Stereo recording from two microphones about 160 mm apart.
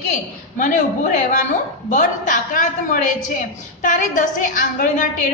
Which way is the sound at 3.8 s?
55° left (ahead or behind).